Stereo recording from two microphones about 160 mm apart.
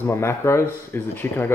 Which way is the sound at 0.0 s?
15° left (ahead or behind).